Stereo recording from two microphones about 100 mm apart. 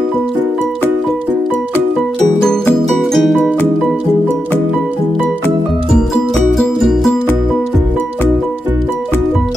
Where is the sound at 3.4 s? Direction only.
15° left (ahead or behind).